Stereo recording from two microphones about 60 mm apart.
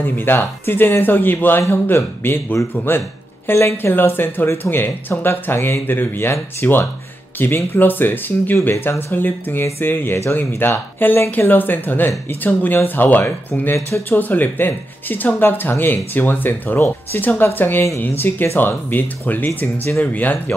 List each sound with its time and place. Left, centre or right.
0.0 s a woman's voice: left